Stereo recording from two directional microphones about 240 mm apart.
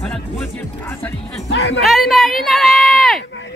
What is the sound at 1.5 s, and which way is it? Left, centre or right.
Speech, left.